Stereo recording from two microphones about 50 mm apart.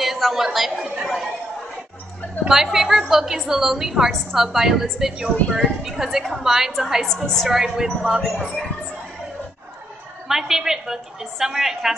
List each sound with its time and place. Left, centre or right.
0.0 s a woman's voice: centre
2.5 s a woman's voice: centre
7.1 s a woman's voice: centre
7.5 s a woman's voice: centre
10.2 s a woman's voice: centre